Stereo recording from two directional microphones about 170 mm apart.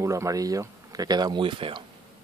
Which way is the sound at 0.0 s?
20° right (ahead or behind).